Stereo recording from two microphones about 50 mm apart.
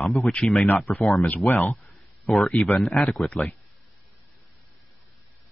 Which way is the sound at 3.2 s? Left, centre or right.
Left.